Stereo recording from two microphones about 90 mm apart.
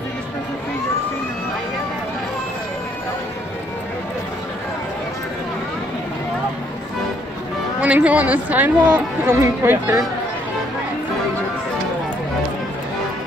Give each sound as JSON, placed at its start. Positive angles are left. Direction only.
{"t": 7.8, "sound": "speech", "side_deg": -15}